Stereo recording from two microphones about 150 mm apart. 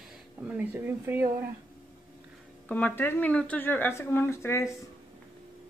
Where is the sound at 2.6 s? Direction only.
10° left (ahead or behind).